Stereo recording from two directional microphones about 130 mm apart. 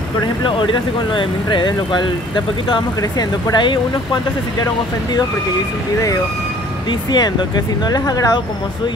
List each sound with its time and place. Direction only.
0.2 s speech: 35° left (ahead or behind)
6.9 s speech: 35° left (ahead or behind)